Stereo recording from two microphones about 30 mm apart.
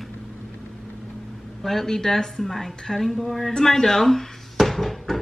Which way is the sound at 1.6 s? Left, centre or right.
Centre.